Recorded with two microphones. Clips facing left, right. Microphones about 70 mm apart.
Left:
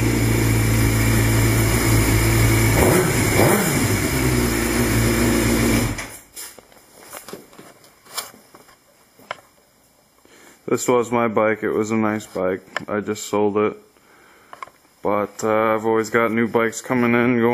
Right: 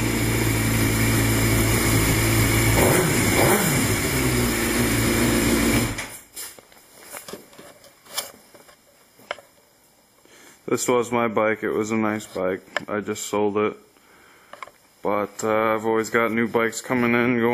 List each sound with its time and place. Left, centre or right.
0.0 s vehicle: centre
5.0 s a sound: centre
10.7 s speech: centre
15.0 s speech: centre